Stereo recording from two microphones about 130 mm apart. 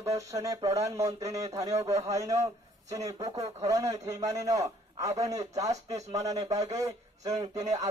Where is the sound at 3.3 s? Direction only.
55° right (ahead or behind).